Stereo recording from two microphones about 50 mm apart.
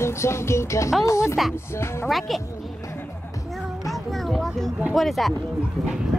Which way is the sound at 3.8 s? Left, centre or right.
Centre.